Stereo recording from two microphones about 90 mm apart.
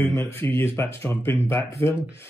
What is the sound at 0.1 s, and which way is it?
Speech, 25° left (ahead or behind).